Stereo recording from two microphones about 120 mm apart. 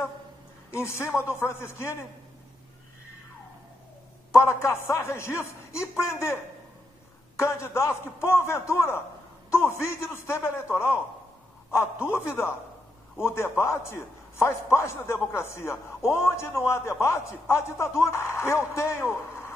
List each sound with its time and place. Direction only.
0.7 s a man's voice: 20° left (ahead or behind)
4.3 s a man's voice: 25° left (ahead or behind)